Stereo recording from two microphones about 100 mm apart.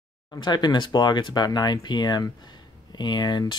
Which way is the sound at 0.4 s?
50° left (ahead or behind).